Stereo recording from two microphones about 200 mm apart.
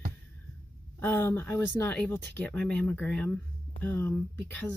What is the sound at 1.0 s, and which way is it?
Speech, 10° left (ahead or behind).